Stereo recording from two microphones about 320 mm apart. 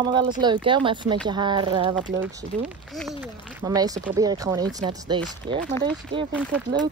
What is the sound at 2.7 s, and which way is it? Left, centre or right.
Speech, centre.